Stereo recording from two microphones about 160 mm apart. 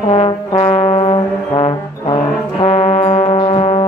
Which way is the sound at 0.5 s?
35° left (ahead or behind).